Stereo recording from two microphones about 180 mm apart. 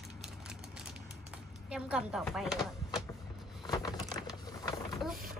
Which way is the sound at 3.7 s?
20° left (ahead or behind).